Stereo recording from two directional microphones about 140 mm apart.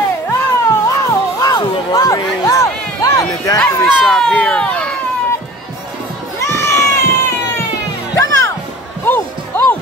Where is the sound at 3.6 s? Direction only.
5° left (ahead or behind).